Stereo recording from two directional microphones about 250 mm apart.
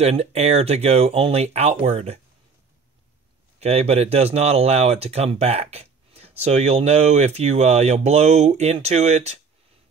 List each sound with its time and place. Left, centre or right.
0.0 s speech: right
3.5 s speech: right